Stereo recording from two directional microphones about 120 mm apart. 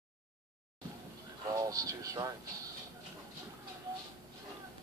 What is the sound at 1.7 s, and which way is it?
Speech, 30° right (ahead or behind).